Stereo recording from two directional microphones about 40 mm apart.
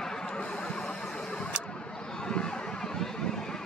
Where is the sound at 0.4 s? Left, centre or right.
Left.